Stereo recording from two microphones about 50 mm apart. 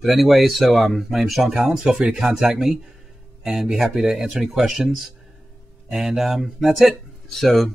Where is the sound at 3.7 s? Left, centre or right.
Centre.